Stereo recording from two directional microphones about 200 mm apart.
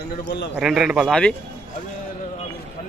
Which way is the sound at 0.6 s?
5° right (ahead or behind).